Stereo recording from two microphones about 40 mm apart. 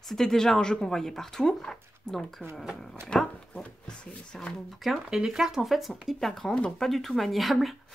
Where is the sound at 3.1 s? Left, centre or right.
Left.